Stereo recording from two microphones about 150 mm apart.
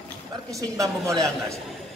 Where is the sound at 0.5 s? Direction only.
20° right (ahead or behind).